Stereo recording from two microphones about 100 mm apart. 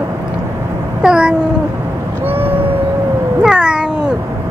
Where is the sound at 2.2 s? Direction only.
20° right (ahead or behind).